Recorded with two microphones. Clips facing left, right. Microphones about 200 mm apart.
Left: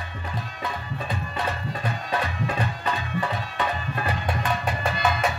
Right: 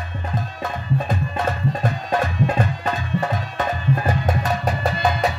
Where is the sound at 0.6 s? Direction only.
45° right (ahead or behind).